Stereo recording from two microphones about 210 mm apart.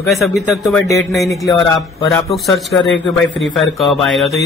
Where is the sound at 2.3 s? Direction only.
Centre (ahead or behind).